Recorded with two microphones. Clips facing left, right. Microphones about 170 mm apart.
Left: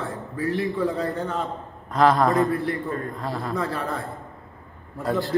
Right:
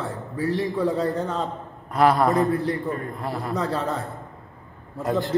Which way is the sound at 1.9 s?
10° right (ahead or behind).